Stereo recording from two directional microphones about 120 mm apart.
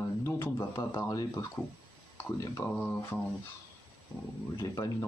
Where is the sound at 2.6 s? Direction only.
15° left (ahead or behind).